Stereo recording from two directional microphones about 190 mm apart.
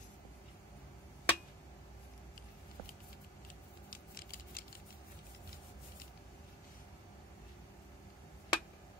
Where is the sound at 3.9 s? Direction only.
50° left (ahead or behind).